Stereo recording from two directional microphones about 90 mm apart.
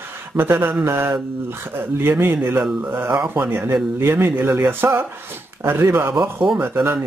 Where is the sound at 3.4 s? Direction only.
25° right (ahead or behind).